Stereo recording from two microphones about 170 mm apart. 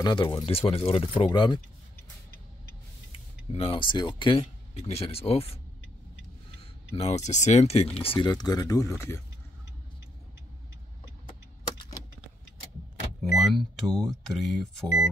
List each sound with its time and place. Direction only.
0.0 s speech: 25° left (ahead or behind)
3.5 s speech: 30° left (ahead or behind)
6.9 s speech: 35° left (ahead or behind); by 9.2 s 15° left (ahead or behind)
13.2 s speech: centre (ahead or behind)